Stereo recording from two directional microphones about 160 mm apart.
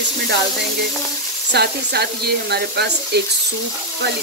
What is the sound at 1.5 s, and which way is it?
Speech, 90° right.